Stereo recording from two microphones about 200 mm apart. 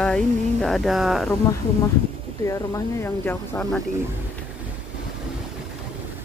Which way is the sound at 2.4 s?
15° left (ahead or behind).